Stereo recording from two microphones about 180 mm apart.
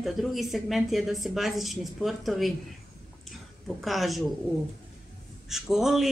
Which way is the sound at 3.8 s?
Centre (ahead or behind).